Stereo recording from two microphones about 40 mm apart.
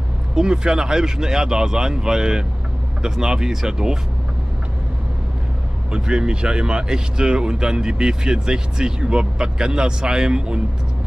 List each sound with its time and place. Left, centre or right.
0.4 s speech: centre
5.9 s speech: right